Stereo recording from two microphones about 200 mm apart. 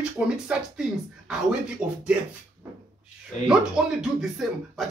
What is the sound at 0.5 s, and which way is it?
Speech, 5° right (ahead or behind).